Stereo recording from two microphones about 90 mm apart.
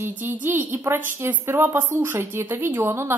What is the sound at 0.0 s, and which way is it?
A woman's voice, 20° right (ahead or behind).